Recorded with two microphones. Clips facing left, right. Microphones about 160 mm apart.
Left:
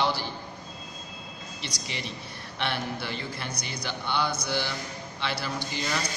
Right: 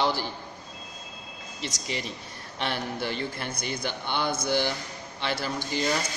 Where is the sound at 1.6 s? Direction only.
45° right (ahead or behind).